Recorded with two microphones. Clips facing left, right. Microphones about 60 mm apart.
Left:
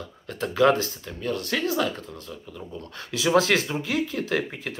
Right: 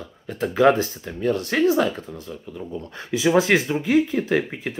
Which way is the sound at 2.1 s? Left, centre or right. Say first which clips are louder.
Right 4 dB; centre.